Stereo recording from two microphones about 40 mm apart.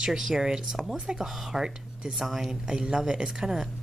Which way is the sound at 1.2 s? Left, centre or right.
Centre.